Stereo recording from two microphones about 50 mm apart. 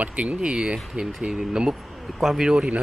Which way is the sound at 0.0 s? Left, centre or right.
Right.